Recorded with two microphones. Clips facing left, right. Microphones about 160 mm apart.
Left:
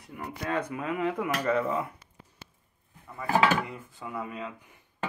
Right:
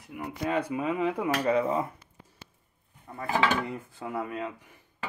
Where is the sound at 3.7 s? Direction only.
45° right (ahead or behind).